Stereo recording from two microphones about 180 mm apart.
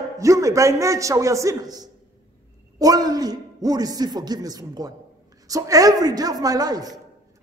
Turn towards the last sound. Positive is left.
turn(degrees=-20)  # may be behind; listen again after turning